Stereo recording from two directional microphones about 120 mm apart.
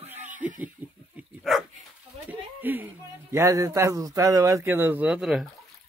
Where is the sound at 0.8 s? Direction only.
15° right (ahead or behind).